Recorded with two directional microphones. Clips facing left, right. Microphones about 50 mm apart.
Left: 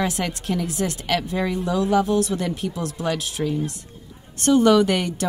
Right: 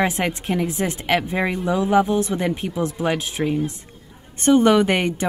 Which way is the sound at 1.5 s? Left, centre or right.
Centre.